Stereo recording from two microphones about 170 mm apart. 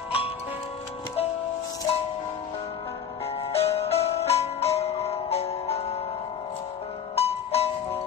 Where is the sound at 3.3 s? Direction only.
35° left (ahead or behind).